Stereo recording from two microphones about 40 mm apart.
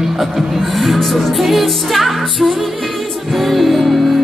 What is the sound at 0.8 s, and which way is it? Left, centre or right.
Music, centre.